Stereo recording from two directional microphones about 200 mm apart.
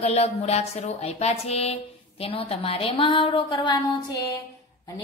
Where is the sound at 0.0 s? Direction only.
30° left (ahead or behind).